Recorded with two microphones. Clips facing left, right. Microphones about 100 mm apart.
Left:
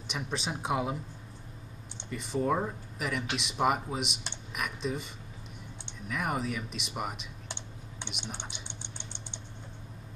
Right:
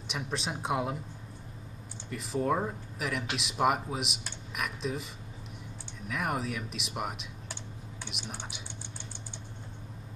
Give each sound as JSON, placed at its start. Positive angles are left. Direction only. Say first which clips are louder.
{"t": 0.1, "sound": "speech", "louder": "even", "side_deg": 0}
{"t": 2.0, "sound": "speech", "louder": "even", "side_deg": 0}
{"t": 8.6, "sound": "a sound", "louder": "right 1 dB", "side_deg": 25}